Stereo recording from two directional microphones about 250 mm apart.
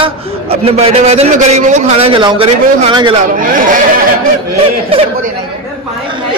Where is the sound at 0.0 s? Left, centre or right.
Right.